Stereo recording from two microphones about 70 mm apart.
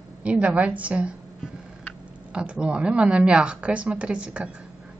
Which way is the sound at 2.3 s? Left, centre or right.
Centre.